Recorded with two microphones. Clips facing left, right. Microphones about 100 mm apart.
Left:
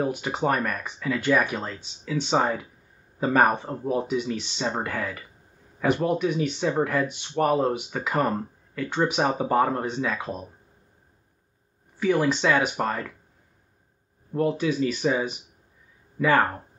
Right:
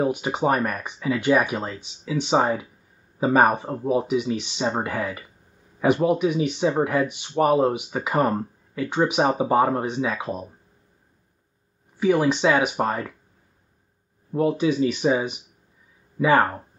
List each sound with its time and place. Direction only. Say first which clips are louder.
0.0 s speech: right 3 dB; 10° right (ahead or behind)
12.0 s speech: right 3 dB; 10° right (ahead or behind)
14.3 s speech: right 3 dB; 15° right (ahead or behind)